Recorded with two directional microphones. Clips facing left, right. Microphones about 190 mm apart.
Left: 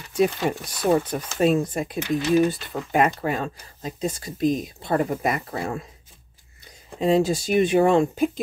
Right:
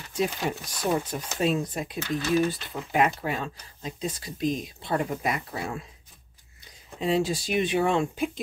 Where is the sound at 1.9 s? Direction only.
20° left (ahead or behind).